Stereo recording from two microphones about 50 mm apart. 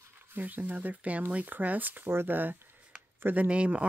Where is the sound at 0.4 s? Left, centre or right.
Right.